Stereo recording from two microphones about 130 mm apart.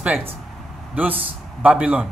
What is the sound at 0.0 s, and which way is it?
Speech, 15° right (ahead or behind).